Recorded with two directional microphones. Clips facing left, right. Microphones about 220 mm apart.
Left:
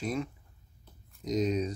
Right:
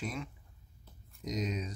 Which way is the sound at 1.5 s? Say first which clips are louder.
Left 8 dB; 35° left (ahead or behind).